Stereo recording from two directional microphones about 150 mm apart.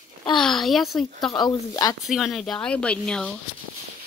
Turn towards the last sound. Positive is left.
turn(degrees=5)  # may be behind; listen again after turning